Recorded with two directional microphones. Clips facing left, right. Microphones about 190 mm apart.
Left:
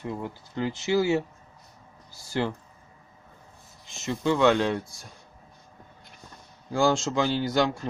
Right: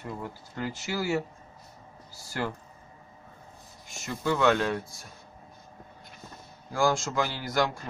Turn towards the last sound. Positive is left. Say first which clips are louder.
# left 5 dB
turn(degrees=20)  # may be behind; listen again after turning